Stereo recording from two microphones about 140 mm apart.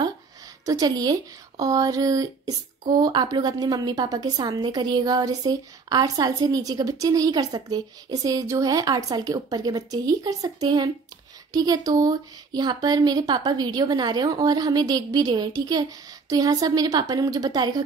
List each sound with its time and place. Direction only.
0.7 s a woman's voice: 25° right (ahead or behind)